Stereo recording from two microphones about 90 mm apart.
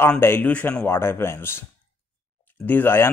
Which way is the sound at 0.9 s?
25° left (ahead or behind).